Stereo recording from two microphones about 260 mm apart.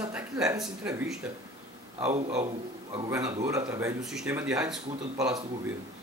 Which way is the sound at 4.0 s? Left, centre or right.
Centre.